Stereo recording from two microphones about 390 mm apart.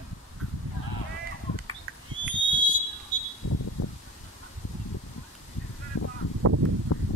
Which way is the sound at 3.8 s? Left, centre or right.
Left.